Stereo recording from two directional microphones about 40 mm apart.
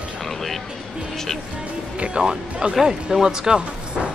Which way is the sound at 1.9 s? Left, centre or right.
Right.